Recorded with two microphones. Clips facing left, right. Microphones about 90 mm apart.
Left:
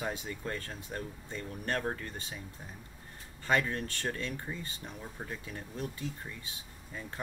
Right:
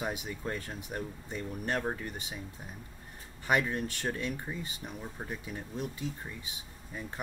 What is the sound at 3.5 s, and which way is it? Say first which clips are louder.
Speech: right 1 dB; 15° right (ahead or behind).